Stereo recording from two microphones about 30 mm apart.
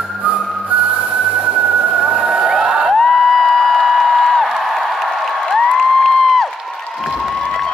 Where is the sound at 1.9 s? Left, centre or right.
Right.